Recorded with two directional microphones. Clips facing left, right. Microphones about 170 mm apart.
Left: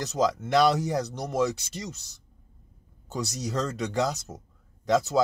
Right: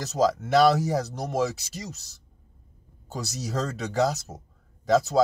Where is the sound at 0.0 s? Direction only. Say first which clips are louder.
Right 2 dB; 5° right (ahead or behind).